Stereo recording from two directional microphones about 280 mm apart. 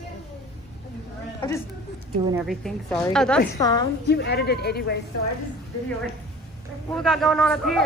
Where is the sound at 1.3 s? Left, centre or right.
Centre.